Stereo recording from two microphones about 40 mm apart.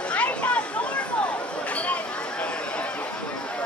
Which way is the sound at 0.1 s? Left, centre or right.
Left.